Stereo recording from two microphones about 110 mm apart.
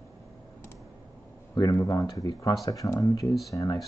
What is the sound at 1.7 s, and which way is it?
Speech, 30° left (ahead or behind).